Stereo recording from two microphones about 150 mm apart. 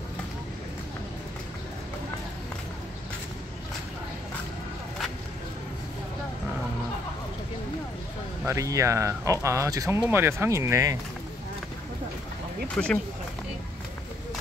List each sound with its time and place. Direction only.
8.5 s speech: 20° right (ahead or behind)
12.7 s speech: 10° left (ahead or behind)